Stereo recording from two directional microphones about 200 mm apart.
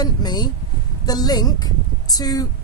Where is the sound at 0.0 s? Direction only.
20° left (ahead or behind).